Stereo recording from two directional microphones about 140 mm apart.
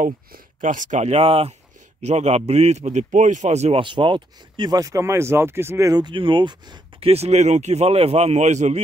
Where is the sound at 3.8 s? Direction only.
35° right (ahead or behind).